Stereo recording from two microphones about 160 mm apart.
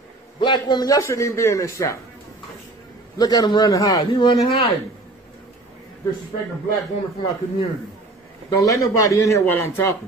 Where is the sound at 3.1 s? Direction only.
25° left (ahead or behind).